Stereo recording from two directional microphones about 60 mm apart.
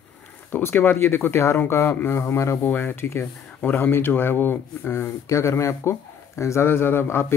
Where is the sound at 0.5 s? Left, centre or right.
Left.